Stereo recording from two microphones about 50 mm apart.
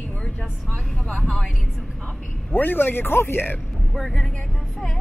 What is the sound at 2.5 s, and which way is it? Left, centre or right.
Speech, left.